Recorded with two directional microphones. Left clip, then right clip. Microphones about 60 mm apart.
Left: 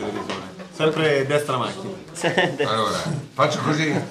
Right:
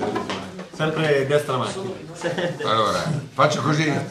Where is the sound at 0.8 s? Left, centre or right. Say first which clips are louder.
Left 1 dB; centre.